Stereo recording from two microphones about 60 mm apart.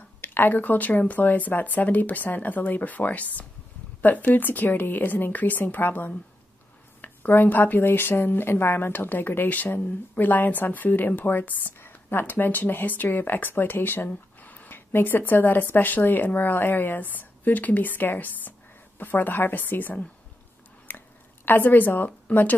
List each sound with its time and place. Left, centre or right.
0.2 s a woman's voice: left
20.9 s a sound: left
21.5 s a woman's voice: left